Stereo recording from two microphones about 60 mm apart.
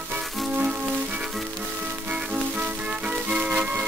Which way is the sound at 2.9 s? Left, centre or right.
Right.